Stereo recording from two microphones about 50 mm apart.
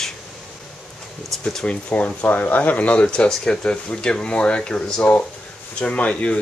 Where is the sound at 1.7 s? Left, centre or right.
Left.